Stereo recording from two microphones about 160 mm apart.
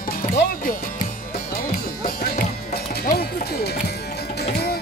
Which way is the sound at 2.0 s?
70° left (ahead or behind).